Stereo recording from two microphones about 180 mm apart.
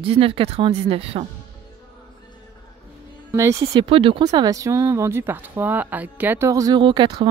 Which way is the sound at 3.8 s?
30° right (ahead or behind).